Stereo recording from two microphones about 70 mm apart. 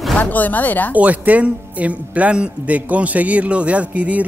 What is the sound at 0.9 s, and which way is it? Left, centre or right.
Speech, right.